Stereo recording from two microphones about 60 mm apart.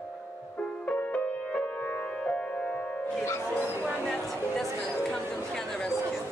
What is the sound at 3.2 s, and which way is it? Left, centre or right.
Music, left.